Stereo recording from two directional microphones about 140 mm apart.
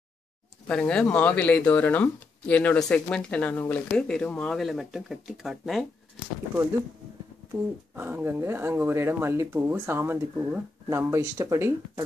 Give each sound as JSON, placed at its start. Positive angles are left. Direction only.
{"t": 0.7, "sound": "speech", "side_deg": 5}
{"t": 7.9, "sound": "speech", "side_deg": -15}